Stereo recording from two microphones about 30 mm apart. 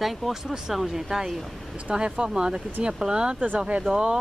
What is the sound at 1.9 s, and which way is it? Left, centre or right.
Speech, right.